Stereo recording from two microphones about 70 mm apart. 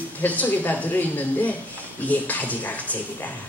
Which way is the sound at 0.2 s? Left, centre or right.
Left.